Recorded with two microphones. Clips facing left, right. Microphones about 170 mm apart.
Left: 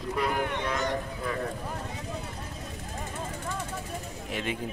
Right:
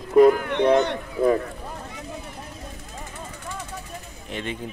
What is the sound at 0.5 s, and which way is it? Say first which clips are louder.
Speech: right 11 dB; 65° right (ahead or behind).